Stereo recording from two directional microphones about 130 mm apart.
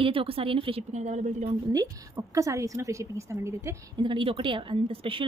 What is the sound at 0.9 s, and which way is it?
Speech, 65° right (ahead or behind).